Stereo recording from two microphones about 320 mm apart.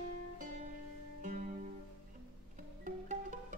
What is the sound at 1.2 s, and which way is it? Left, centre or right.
Music, right.